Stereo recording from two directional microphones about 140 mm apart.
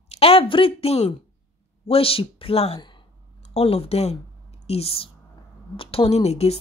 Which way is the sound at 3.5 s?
45° left (ahead or behind).